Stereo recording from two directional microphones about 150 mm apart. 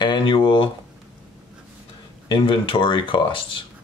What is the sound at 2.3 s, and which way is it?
Speech, 35° left (ahead or behind).